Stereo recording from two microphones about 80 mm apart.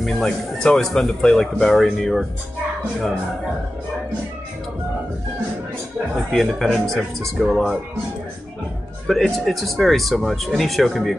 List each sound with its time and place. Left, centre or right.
0.0 s speech: centre
6.3 s speech: centre
9.0 s speech: centre